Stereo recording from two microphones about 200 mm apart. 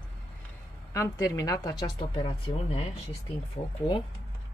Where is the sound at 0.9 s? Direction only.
15° left (ahead or behind).